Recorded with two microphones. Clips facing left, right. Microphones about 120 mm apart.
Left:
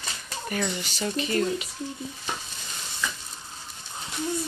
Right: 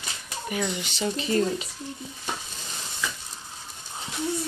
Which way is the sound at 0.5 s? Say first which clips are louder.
Even; 15° right (ahead or behind).